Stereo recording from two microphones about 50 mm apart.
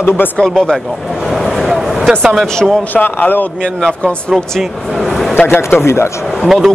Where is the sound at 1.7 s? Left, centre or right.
Centre.